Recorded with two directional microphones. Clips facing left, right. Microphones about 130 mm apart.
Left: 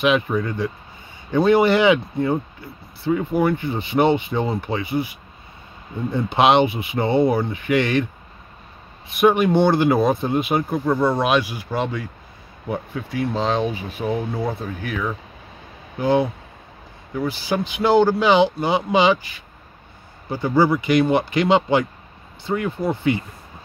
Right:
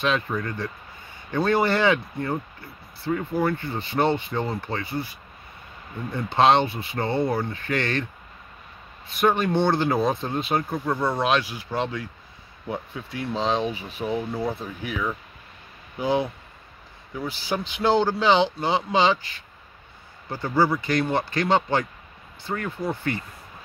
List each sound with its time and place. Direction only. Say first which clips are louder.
0.0 s speech: left 6 dB; 15° left (ahead or behind)
6.1 s speech: left 3 dB; 15° left (ahead or behind)
9.1 s speech: left 5 dB; 15° left (ahead or behind)
14.8 s speech: left 2 dB; centre (ahead or behind)
17.3 s speech: left 2 dB; 5° left (ahead or behind)
20.2 s speech: left 4 dB; 15° left (ahead or behind)